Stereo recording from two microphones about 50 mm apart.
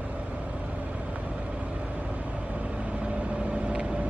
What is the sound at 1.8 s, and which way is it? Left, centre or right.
Vehicle, right.